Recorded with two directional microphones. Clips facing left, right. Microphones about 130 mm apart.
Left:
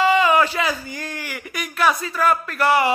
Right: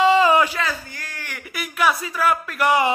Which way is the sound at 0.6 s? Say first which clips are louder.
Left 3 dB; 15° left (ahead or behind).